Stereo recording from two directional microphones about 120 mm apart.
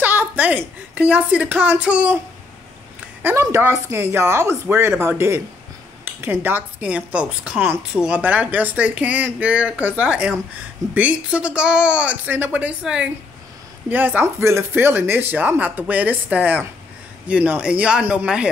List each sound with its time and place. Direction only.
0.0 s a woman's voice: 15° right (ahead or behind)
3.2 s speech: 20° right (ahead or behind)